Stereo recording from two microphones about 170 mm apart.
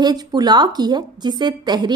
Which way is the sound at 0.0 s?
25° right (ahead or behind).